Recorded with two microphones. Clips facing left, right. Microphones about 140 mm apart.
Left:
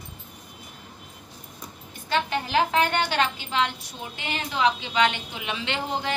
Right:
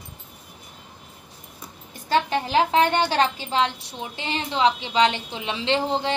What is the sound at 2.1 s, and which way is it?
A woman's voice, 30° right (ahead or behind).